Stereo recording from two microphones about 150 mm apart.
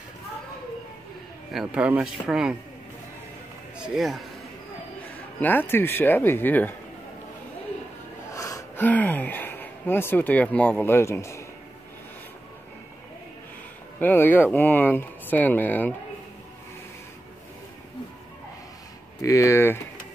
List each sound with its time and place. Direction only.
1.5 s speech: 5° right (ahead or behind)
3.7 s speech: 5° right (ahead or behind)
5.4 s speech: 15° left (ahead or behind)
8.3 s gasp: 20° left (ahead or behind)
8.8 s speech: 10° left (ahead or behind)
13.9 s speech: 15° left (ahead or behind)
19.2 s speech: 20° left (ahead or behind)